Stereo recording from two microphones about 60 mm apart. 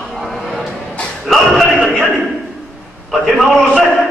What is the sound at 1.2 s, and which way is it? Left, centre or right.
Speech, centre.